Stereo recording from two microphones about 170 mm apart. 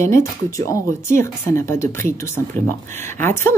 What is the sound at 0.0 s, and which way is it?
Speech, 15° left (ahead or behind).